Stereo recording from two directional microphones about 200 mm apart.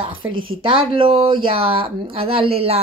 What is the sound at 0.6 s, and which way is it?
Speech, 25° right (ahead or behind).